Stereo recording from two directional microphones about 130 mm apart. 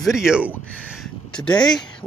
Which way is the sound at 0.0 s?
5° right (ahead or behind).